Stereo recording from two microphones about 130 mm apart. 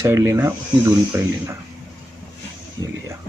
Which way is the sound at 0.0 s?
20° right (ahead or behind).